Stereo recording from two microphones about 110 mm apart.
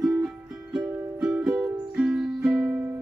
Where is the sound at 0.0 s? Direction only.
30° right (ahead or behind).